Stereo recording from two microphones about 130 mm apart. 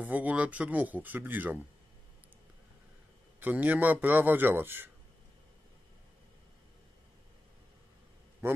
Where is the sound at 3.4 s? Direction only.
10° right (ahead or behind).